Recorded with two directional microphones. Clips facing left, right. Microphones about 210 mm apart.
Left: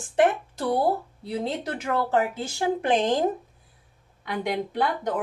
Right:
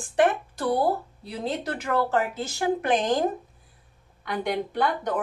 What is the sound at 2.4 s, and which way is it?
Speech, 25° left (ahead or behind).